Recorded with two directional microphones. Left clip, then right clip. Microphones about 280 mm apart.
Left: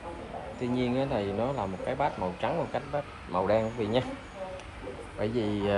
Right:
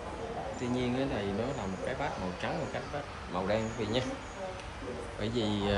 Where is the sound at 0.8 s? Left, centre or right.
Centre.